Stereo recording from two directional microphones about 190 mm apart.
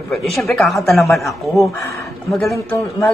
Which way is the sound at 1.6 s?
15° left (ahead or behind).